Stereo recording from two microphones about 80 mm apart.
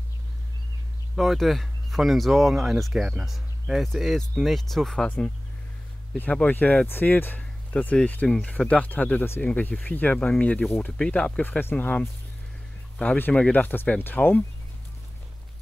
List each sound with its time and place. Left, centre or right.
1.1 s speech: centre
5.0 s speech: centre
6.3 s speech: centre